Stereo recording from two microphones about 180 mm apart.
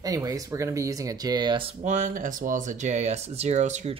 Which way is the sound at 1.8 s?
40° right (ahead or behind).